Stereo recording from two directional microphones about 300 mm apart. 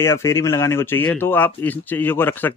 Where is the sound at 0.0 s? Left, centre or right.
Centre.